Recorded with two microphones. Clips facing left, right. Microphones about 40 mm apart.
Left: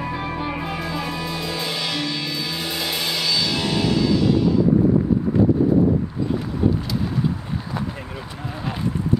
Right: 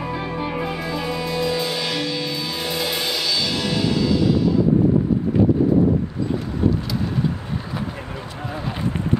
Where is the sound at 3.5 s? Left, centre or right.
Centre.